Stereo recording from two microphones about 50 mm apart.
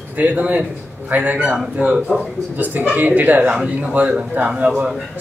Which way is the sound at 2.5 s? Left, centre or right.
Right.